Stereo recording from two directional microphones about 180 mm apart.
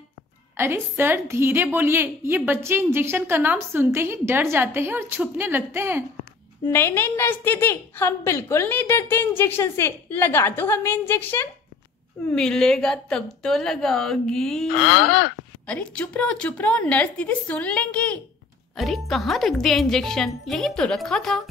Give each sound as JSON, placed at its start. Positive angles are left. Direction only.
{"t": 0.6, "sound": "a woman's voice", "side_deg": -15}
{"t": 6.7, "sound": "a woman's voice", "side_deg": 10}
{"t": 14.8, "sound": "speech", "side_deg": 85}
{"t": 15.6, "sound": "a woman's voice", "side_deg": 5}